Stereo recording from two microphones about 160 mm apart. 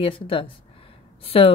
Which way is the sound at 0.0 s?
35° left (ahead or behind).